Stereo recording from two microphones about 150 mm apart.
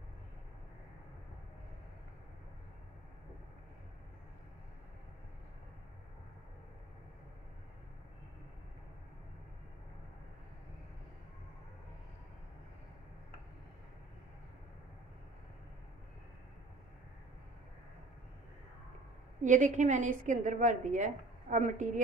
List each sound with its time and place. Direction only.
19.4 s a woman's voice: 55° right (ahead or behind)